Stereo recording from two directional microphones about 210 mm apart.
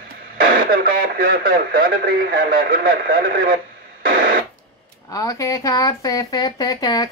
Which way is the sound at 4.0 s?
45° right (ahead or behind).